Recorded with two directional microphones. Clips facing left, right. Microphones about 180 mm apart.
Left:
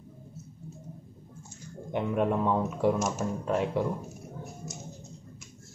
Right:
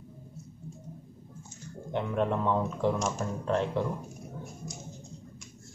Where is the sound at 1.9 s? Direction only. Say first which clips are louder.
Left 2 dB; 10° left (ahead or behind).